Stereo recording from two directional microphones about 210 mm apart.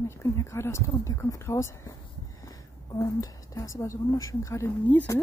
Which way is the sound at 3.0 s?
15° left (ahead or behind).